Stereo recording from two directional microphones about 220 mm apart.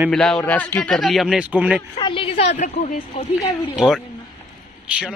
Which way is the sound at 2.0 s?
25° left (ahead or behind).